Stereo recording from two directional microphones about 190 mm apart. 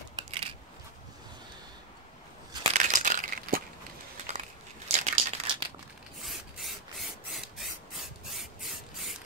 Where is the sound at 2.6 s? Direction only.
40° right (ahead or behind).